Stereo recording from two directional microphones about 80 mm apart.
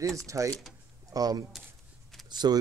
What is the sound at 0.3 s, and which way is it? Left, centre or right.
Speech, right.